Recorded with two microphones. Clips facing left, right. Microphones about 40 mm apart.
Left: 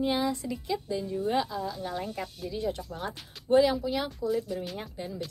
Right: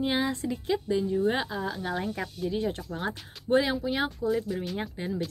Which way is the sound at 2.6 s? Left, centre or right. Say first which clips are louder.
Left 2 dB; right.